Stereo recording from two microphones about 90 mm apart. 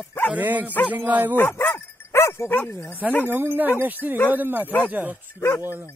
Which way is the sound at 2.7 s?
30° left (ahead or behind).